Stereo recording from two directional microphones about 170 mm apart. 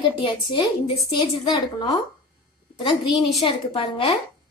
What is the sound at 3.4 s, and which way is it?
Speech, 30° left (ahead or behind).